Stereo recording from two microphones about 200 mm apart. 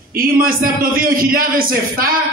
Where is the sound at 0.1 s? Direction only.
45° right (ahead or behind).